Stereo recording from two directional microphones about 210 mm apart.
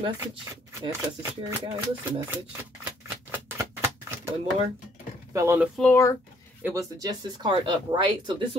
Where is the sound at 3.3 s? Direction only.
10° right (ahead or behind).